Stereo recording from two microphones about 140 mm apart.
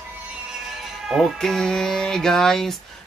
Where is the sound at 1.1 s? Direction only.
Centre (ahead or behind).